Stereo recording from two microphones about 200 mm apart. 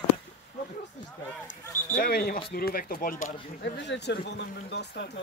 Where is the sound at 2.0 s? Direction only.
50° left (ahead or behind).